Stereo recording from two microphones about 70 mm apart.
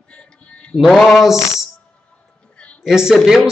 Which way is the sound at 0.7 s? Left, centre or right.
Centre.